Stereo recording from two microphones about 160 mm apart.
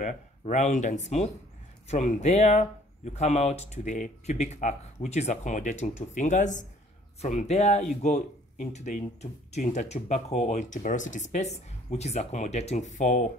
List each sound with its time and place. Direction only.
0.0 s speech: 50° left (ahead or behind)